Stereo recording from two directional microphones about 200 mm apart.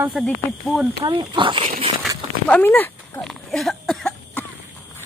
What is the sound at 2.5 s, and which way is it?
Speech, 10° left (ahead or behind).